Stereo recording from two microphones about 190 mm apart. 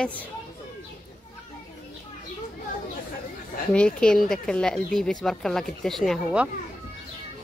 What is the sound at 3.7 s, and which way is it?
Speech, 5° left (ahead or behind).